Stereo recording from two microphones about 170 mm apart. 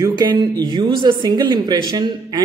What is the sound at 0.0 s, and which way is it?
A woman's voice, 25° right (ahead or behind).